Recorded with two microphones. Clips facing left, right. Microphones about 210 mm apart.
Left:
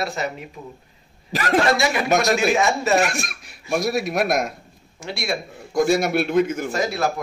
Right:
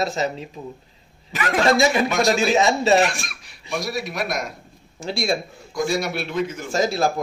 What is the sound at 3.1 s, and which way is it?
Speech, 50° left (ahead or behind).